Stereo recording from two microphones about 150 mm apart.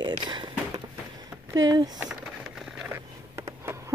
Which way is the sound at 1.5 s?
25° right (ahead or behind).